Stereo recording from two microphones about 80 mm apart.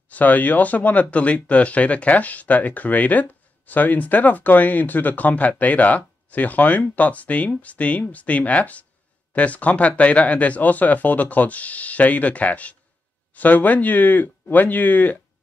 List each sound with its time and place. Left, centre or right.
0.1 s speech: left